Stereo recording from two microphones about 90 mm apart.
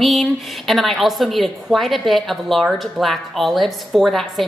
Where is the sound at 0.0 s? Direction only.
Centre (ahead or behind).